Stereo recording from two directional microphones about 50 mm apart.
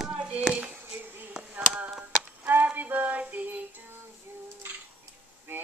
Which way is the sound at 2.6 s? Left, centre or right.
Right.